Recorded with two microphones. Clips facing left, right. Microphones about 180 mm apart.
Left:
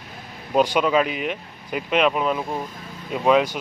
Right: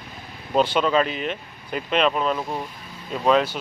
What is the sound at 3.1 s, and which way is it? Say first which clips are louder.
Speech: left 1 dB; 10° left (ahead or behind).